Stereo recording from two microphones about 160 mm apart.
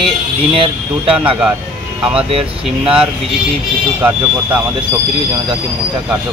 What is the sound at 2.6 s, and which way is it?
Speech, 5° right (ahead or behind).